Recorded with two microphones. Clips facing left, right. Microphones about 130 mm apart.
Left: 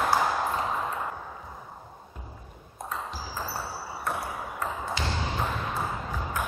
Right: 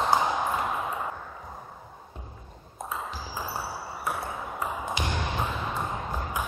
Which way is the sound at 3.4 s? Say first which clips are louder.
Right 1 dB; 10° right (ahead or behind).